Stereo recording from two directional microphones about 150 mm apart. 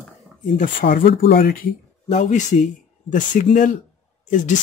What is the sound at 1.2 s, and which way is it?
Speech, 80° left.